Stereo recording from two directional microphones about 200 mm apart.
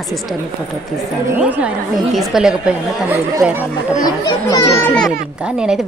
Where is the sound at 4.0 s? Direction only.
20° left (ahead or behind).